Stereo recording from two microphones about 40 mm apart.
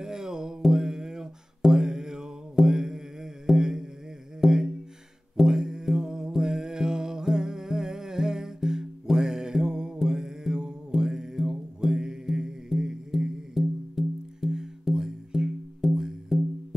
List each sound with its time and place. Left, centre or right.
0.0 s music: centre